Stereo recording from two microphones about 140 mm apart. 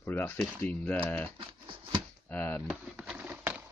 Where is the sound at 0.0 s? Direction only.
15° left (ahead or behind).